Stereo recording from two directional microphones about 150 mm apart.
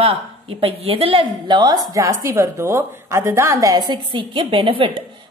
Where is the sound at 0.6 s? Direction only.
40° right (ahead or behind).